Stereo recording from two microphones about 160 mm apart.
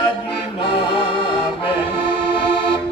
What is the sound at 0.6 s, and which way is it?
Music, 30° left (ahead or behind).